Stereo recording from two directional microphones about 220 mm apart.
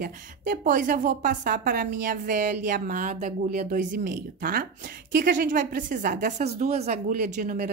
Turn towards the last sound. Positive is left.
turn(degrees=-35)  # may be behind; listen again after turning